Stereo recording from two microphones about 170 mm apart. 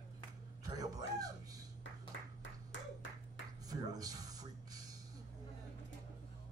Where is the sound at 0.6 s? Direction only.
20° right (ahead or behind).